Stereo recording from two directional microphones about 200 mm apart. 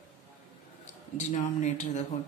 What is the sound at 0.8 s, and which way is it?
A man's voice, 35° left (ahead or behind).